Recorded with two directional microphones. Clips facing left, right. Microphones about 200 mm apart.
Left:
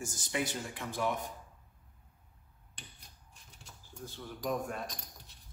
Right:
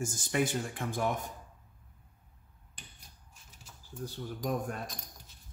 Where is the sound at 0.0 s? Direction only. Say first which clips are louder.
Right 5 dB; 50° right (ahead or behind).